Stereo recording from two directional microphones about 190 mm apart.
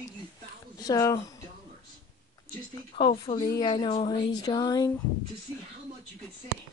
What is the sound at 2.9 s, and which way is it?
Speech, 25° left (ahead or behind).